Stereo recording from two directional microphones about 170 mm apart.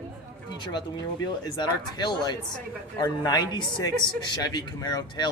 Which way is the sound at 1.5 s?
25° left (ahead or behind).